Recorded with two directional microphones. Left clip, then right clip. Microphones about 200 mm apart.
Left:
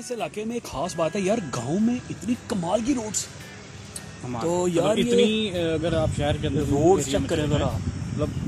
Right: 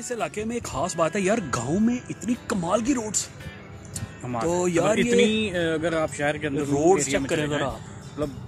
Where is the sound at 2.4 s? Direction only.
30° right (ahead or behind).